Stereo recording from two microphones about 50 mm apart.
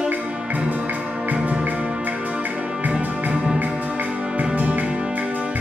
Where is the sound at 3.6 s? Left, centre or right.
Right.